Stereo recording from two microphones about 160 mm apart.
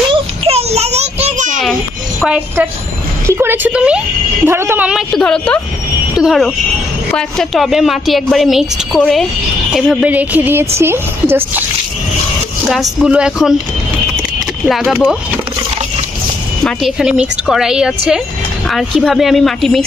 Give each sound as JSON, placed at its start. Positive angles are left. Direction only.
{"t": 0.5, "sound": "a sound", "side_deg": -40}
{"t": 2.2, "sound": "a woman's voice", "side_deg": -10}
{"t": 12.6, "sound": "a woman's voice", "side_deg": 0}
{"t": 14.7, "sound": "a woman's voice", "side_deg": 0}
{"t": 16.6, "sound": "a woman's voice", "side_deg": 0}